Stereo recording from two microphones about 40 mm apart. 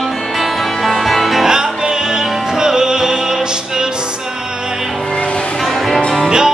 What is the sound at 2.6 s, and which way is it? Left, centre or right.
Music, centre.